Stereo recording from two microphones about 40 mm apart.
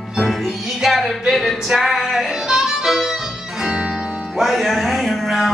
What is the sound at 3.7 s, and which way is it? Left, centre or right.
Music, right.